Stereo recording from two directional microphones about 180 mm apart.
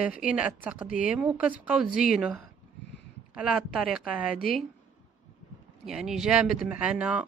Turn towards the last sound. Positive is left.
turn(degrees=-5)  # may be behind; listen again after turning